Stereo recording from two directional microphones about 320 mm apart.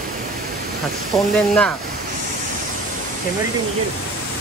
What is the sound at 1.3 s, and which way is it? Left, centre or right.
Speech, centre.